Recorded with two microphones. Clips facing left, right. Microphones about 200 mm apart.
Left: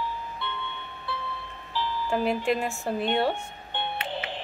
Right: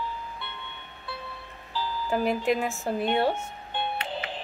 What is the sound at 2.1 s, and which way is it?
Speech, 5° right (ahead or behind).